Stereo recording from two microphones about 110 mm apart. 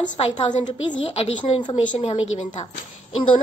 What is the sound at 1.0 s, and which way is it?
A woman's voice, 55° left (ahead or behind).